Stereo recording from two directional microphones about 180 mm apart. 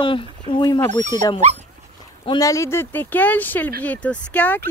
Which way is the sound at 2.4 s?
15° left (ahead or behind).